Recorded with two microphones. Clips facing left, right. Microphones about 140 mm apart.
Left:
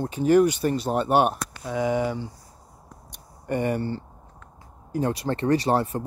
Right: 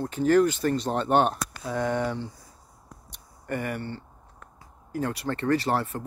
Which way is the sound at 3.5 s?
25° left (ahead or behind).